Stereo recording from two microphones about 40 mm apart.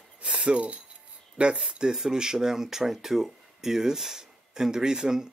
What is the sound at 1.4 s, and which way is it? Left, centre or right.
Speech, right.